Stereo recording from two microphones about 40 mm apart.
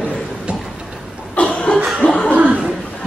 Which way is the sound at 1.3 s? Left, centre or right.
Left.